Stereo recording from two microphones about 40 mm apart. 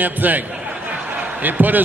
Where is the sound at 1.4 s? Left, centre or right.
Right.